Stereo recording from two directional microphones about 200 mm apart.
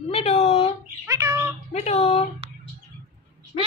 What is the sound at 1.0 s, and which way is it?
Bird, 15° right (ahead or behind).